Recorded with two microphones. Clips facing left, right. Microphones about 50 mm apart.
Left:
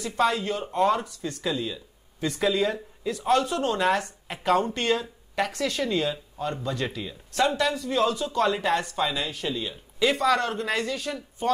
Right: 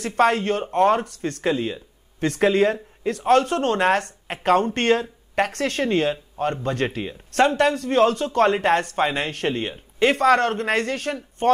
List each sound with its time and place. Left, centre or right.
0.0 s speech: right